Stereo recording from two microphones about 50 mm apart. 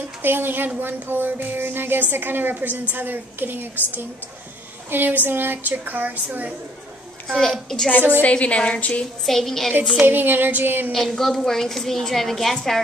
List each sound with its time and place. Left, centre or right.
0.2 s a woman's voice: right
7.3 s a woman's voice: centre
8.2 s a woman's voice: left
9.2 s a woman's voice: centre
10.0 s a woman's voice: right
10.9 s a woman's voice: centre